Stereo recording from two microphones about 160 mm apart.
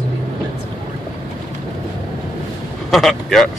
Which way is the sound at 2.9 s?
Centre (ahead or behind).